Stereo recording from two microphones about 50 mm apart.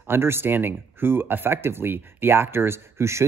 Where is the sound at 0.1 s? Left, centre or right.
Right.